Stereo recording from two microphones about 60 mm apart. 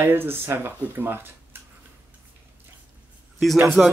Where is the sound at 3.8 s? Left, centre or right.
Centre.